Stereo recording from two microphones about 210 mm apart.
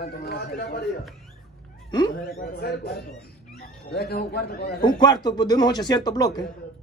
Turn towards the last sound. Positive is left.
turn(degrees=20)  # may be behind; listen again after turning